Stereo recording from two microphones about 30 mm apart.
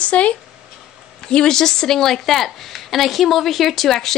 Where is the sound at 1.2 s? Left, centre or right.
Left; by 3.9 s centre.